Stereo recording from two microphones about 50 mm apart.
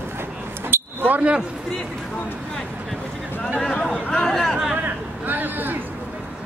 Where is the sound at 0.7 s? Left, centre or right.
Right.